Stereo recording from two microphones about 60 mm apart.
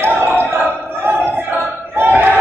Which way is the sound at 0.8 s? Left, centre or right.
Right.